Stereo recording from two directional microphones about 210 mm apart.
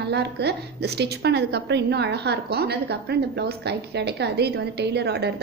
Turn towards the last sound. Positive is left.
turn(degrees=-50)  # may be behind; listen again after turning